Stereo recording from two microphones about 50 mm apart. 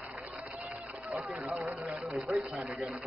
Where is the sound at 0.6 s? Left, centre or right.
Right.